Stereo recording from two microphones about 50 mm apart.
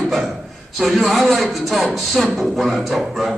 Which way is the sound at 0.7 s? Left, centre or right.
Centre.